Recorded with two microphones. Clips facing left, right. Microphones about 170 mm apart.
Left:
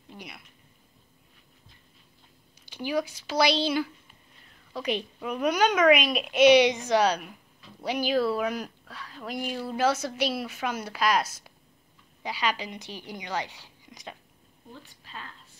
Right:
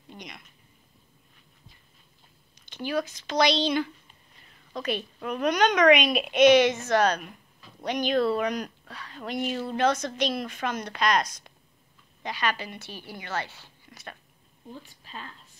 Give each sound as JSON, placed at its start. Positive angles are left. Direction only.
{"t": 0.1, "sound": "a sound", "side_deg": 5}
{"t": 2.7, "sound": "a woman's voice", "side_deg": 10}
{"t": 6.4, "sound": "a woman's voice", "side_deg": 15}
{"t": 14.7, "sound": "a woman's voice", "side_deg": -15}